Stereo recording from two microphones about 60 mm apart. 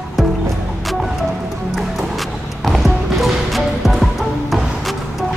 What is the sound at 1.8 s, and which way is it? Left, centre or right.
Music, centre.